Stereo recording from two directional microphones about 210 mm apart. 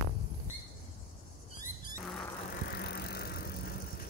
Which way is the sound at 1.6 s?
40° left (ahead or behind).